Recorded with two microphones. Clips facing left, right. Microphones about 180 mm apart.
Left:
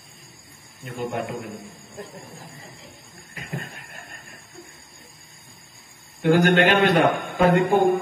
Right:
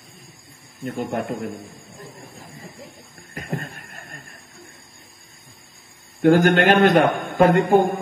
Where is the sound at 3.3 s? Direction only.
45° right (ahead or behind).